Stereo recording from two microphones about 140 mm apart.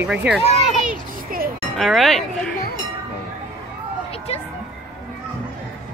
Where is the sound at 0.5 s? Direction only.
55° right (ahead or behind).